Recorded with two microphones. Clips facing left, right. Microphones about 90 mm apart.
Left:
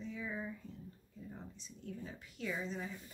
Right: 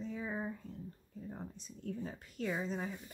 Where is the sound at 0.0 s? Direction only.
40° right (ahead or behind).